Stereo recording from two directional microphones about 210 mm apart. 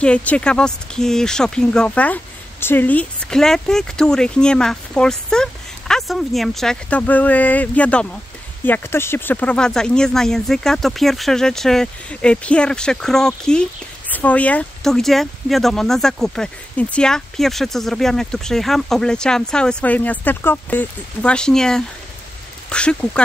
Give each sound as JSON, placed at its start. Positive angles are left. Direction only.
{"t": 0.0, "sound": "speech", "side_deg": 5}